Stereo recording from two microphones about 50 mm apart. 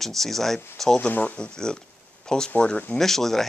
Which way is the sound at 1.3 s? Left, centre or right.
Centre.